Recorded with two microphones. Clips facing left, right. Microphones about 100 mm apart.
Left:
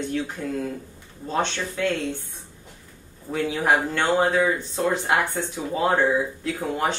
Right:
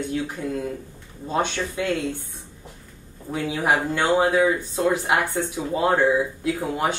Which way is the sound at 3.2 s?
10° right (ahead or behind).